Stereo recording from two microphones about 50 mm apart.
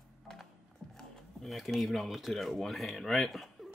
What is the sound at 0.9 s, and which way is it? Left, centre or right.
Speech, centre.